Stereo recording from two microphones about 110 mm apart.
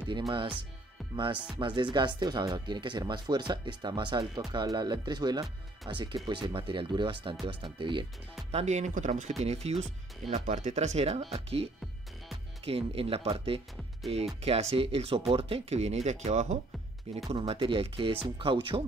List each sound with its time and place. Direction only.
0.3 s speech: 50° right (ahead or behind)
8.5 s speech: 90° right
9.4 s speech: 75° right (ahead or behind)
10.3 s speech: 90° right; by 14.2 s 55° right (ahead or behind)
14.4 s speech: 70° right (ahead or behind); by 16.4 s 90° right
17.1 s speech: 65° right (ahead or behind)